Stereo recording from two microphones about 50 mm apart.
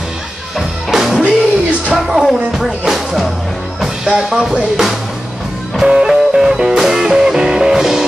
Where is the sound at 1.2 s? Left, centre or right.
Right.